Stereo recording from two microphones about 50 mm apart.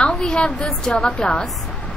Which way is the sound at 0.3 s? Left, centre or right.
Centre.